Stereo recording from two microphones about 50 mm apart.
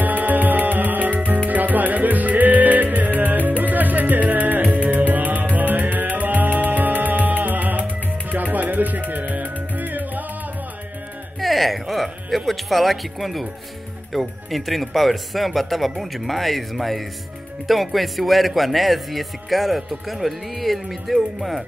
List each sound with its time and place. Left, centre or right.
0.0 s music: right
11.3 s music: centre
14.1 s speech: centre